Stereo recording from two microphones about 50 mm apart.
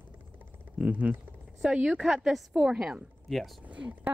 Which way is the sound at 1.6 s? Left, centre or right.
Centre.